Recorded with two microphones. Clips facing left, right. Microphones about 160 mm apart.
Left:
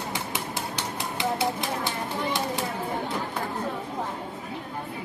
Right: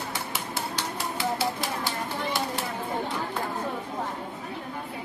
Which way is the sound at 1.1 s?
20° left (ahead or behind).